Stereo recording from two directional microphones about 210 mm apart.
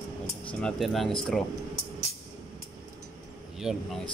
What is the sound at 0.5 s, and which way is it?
Mantra, 5° left (ahead or behind).